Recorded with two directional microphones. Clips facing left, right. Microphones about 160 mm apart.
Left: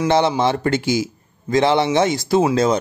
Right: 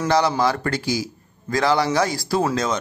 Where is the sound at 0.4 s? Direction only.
25° left (ahead or behind).